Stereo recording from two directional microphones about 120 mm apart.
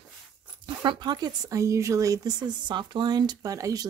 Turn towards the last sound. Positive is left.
turn(degrees=-30)  # may be behind; listen again after turning